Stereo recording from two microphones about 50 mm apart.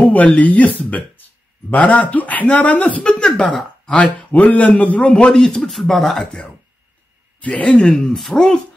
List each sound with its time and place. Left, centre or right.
0.0 s a sound: left
0.4 s speech: left
3.3 s speech: centre
5.3 s speech: centre
5.6 s speech: centre
7.4 s speech: left
7.7 s speech: centre